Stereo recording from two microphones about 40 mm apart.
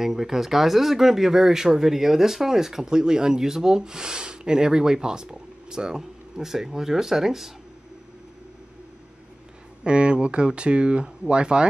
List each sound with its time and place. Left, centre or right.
0.0 s speech: centre
9.8 s speech: right